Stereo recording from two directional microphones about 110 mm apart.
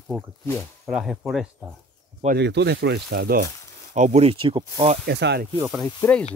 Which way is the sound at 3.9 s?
70° right (ahead or behind).